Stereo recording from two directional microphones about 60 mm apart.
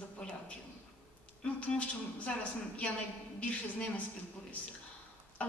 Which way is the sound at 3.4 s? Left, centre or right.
Left.